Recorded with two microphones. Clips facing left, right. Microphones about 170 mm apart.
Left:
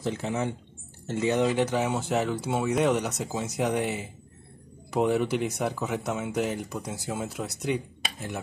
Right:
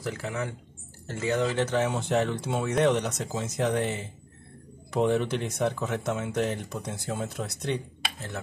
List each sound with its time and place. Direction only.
0.0 s speech: 20° left (ahead or behind)